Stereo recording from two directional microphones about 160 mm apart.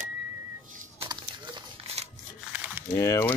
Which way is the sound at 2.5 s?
10° right (ahead or behind).